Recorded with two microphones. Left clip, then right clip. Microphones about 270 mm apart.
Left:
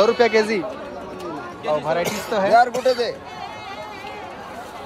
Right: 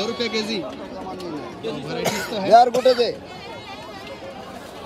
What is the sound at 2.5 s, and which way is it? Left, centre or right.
Speech, right.